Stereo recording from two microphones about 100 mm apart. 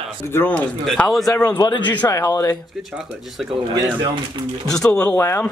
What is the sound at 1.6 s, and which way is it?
Speech, 50° left (ahead or behind).